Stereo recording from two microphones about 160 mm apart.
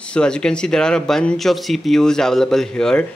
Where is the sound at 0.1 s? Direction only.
5° left (ahead or behind).